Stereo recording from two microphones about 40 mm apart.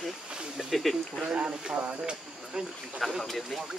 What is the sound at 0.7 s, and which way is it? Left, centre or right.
Speech, centre.